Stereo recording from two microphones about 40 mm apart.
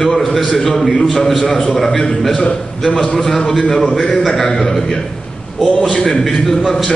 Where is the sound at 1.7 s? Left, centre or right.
Centre.